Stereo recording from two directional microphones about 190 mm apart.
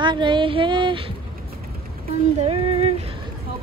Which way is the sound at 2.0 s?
30° right (ahead or behind).